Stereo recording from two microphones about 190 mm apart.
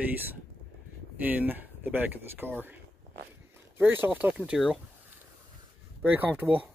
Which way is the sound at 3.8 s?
10° right (ahead or behind).